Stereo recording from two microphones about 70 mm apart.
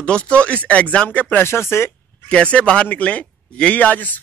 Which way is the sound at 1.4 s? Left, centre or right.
Left.